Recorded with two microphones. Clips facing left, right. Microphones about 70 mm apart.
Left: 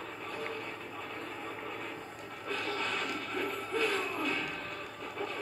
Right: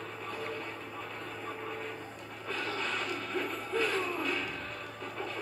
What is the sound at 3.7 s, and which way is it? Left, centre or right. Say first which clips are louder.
Music: right 2 dB; right.